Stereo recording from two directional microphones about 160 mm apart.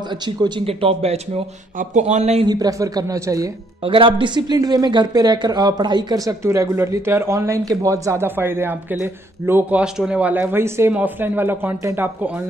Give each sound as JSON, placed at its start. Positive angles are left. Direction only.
{"t": 0.4, "sound": "speech", "side_deg": -35}
{"t": 2.4, "sound": "speech", "side_deg": -25}
{"t": 3.8, "sound": "speech", "side_deg": -35}